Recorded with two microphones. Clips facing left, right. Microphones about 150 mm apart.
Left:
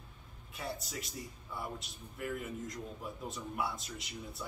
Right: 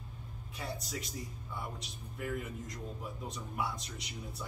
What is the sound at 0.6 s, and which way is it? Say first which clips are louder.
A man's voice: even; centre (ahead or behind).